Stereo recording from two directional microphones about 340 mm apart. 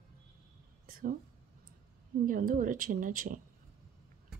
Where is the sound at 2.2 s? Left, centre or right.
Right.